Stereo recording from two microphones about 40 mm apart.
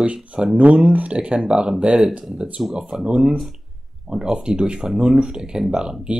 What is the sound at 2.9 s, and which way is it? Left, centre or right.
Speech, centre.